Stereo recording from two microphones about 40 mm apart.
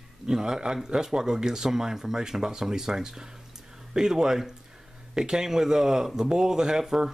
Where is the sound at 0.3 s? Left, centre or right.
Centre.